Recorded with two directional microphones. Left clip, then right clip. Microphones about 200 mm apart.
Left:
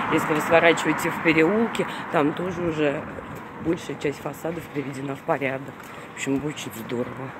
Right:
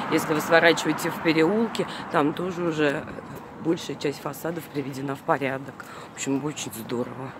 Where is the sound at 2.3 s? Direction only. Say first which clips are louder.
Left 1 dB; 15° right (ahead or behind).